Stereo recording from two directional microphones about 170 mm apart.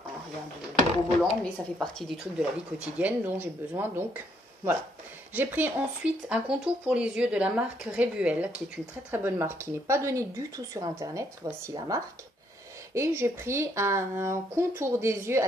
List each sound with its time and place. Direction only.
1.4 s speech: 5° left (ahead or behind)
5.3 s speech: 10° right (ahead or behind)